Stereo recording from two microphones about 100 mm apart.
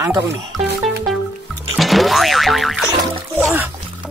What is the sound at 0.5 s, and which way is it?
Music, centre (ahead or behind).